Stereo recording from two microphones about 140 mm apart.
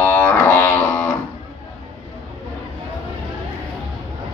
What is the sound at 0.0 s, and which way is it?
Didgeridoo, 15° left (ahead or behind).